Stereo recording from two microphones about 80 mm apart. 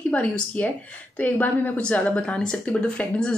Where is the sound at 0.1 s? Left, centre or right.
Centre.